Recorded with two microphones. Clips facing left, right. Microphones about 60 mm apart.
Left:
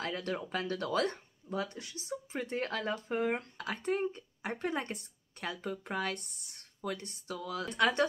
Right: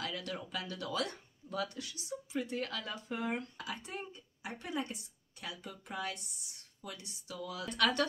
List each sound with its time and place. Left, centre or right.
0.0 s speech: left
1.5 s speech: left
3.5 s speech: left
7.7 s speech: left